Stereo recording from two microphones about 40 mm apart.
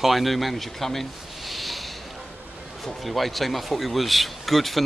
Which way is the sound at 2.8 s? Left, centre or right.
Centre.